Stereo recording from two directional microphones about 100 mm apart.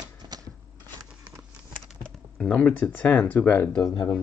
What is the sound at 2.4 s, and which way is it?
Speech, 10° left (ahead or behind).